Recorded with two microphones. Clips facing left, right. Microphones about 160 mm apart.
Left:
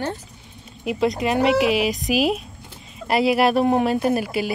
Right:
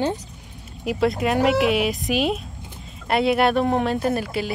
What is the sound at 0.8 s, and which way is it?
Speech, centre (ahead or behind).